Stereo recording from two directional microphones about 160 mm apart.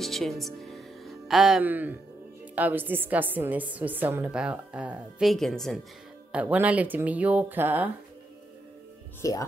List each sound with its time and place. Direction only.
0.0 s music: centre (ahead or behind)
2.5 s a woman's voice: 10° right (ahead or behind)
6.3 s a woman's voice: 10° right (ahead or behind)
9.2 s speech: 20° left (ahead or behind)